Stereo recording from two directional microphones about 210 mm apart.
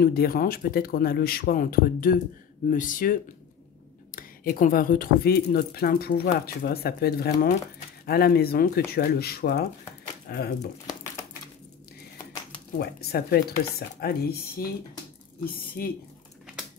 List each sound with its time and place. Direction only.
0.0 s speech: 45° left (ahead or behind)
12.7 s speech: 50° left (ahead or behind)